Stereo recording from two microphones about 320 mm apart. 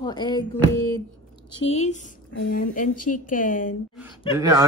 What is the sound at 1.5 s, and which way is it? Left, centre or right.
A woman's voice, centre.